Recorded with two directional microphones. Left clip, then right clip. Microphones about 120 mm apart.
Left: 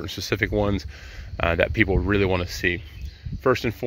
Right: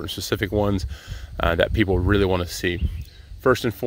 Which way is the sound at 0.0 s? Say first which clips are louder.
Even; 40° right (ahead or behind).